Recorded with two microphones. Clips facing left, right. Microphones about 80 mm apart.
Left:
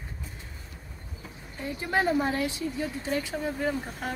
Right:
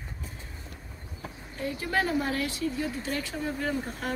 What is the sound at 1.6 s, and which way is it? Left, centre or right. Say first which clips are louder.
A woman's voice: left 2 dB; left.